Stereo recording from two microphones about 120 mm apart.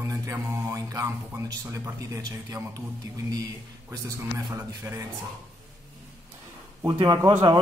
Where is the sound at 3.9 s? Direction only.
25° right (ahead or behind).